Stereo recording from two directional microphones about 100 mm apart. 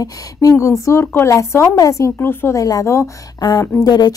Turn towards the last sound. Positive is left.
turn(degrees=45)  # may be behind; listen again after turning